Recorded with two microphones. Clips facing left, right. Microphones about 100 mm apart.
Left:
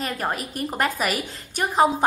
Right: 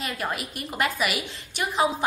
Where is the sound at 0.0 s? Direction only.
40° left (ahead or behind).